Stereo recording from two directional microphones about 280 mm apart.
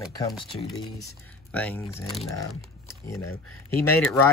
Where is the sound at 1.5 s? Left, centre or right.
Centre.